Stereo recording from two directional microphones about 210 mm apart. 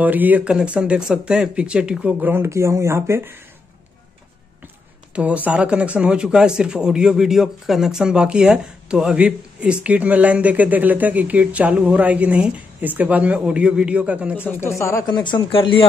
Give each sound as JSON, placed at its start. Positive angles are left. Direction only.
{"t": 0.0, "sound": "speech", "side_deg": -10}
{"t": 5.1, "sound": "speech", "side_deg": -5}
{"t": 14.4, "sound": "speech", "side_deg": 10}